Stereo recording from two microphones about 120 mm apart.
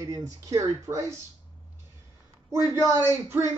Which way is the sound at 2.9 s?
20° right (ahead or behind).